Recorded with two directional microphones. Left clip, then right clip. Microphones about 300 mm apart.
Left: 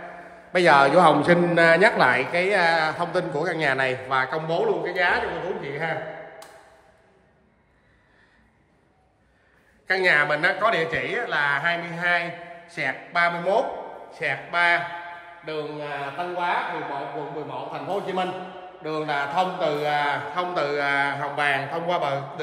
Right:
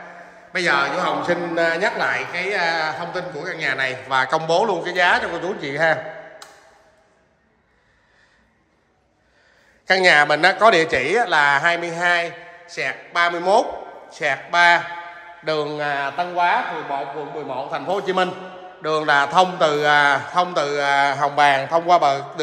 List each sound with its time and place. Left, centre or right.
0.5 s a man's voice: centre
9.8 s a man's voice: centre
15.4 s speech: right
17.6 s a man's voice: right